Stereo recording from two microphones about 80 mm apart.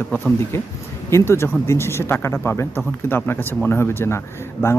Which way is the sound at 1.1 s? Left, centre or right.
Left.